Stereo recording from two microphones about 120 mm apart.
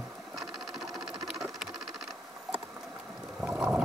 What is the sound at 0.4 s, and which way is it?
Sewing machine, centre (ahead or behind).